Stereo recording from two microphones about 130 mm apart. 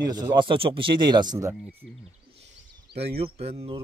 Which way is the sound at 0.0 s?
30° right (ahead or behind).